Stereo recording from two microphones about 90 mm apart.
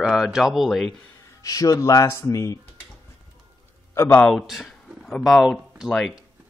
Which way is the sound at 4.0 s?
25° left (ahead or behind).